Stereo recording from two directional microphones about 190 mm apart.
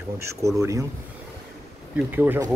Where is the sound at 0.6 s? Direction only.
15° right (ahead or behind).